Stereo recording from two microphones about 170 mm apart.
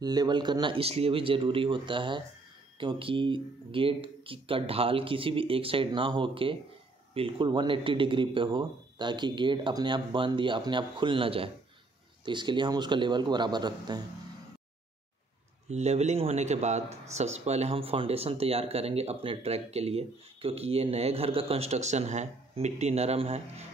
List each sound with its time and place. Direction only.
0.0 s speech: 25° right (ahead or behind)
15.7 s speech: 40° right (ahead or behind)